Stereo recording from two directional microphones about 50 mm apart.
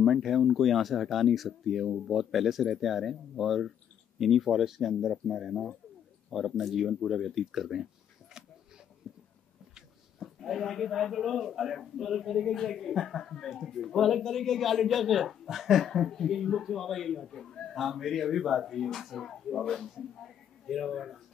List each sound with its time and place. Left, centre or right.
0.0 s a man's voice: centre
9.0 s writing: centre
10.2 s a man's voice: centre